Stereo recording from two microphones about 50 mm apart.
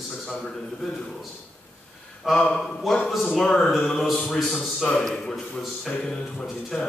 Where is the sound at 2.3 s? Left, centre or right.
Centre.